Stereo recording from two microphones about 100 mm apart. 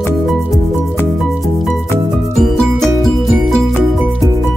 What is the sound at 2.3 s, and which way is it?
Music, 5° left (ahead or behind).